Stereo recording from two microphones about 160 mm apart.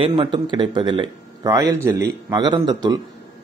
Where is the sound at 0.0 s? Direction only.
30° right (ahead or behind).